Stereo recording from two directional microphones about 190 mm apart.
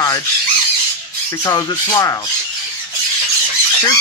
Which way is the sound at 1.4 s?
20° left (ahead or behind).